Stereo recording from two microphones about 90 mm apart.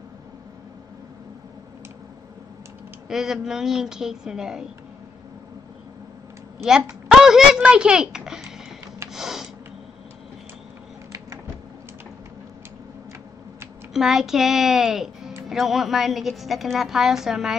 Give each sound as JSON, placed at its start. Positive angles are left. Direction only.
{"t": 3.1, "sound": "a woman's voice", "side_deg": -5}
{"t": 7.1, "sound": "speech", "side_deg": -5}
{"t": 9.1, "sound": "a sound", "side_deg": -5}
{"t": 13.9, "sound": "a woman's voice", "side_deg": -5}